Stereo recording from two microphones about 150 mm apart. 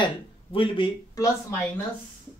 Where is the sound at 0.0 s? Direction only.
35° left (ahead or behind).